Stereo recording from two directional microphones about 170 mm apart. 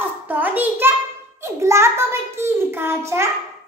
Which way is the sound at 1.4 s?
15° right (ahead or behind).